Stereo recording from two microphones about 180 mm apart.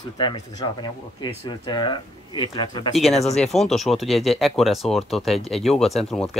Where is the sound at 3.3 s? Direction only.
Centre (ahead or behind).